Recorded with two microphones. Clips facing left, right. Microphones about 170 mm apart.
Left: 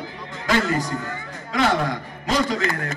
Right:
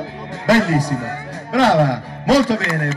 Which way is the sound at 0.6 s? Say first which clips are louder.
Right 5 dB; 75° right (ahead or behind).